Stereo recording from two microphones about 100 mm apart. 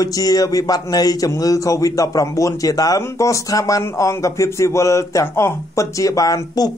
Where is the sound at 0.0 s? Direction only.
35° left (ahead or behind).